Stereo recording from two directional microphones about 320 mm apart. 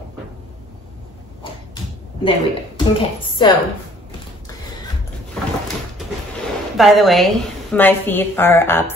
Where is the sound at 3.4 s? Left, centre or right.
Centre.